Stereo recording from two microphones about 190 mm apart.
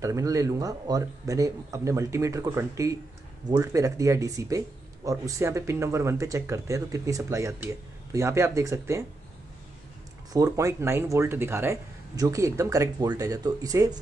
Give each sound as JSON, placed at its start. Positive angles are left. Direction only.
{"t": 0.0, "sound": "speech", "side_deg": -15}
{"t": 10.3, "sound": "speech", "side_deg": -15}